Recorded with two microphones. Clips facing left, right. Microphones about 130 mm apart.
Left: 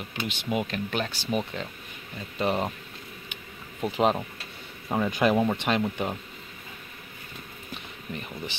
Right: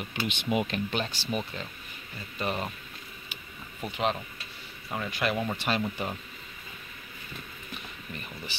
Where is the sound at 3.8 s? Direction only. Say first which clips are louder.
Left 6 dB; 35° left (ahead or behind).